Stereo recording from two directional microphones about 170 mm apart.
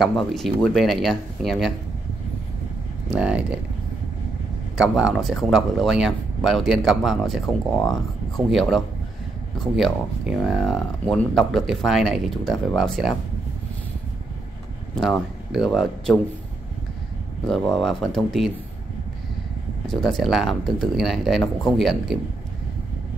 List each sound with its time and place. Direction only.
0.0 s speech: centre (ahead or behind)
3.2 s speech: 5° right (ahead or behind)
4.7 s speech: 5° right (ahead or behind)
15.0 s speech: centre (ahead or behind)
17.5 s speech: 5° left (ahead or behind)
19.9 s speech: centre (ahead or behind)